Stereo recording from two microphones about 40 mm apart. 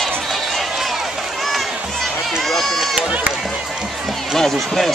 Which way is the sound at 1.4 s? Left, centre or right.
Centre.